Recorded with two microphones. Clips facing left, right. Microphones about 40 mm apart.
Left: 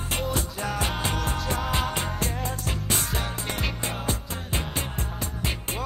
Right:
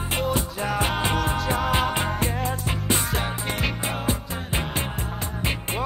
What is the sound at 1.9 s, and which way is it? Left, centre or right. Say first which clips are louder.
Music: right 4 dB; right.